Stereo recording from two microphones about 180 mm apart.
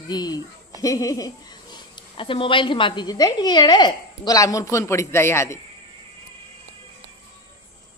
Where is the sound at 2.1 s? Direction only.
30° left (ahead or behind).